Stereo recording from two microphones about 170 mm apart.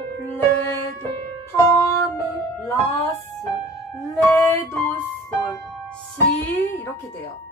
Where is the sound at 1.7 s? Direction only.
20° left (ahead or behind).